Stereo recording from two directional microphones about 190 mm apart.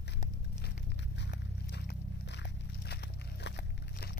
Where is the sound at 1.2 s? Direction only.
60° left (ahead or behind).